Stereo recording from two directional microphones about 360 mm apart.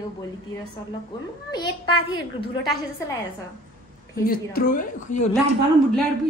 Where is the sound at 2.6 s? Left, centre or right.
Centre.